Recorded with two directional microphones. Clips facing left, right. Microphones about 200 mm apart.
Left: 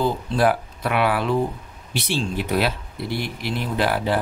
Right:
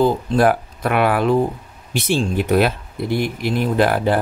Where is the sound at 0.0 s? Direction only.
50° right (ahead or behind).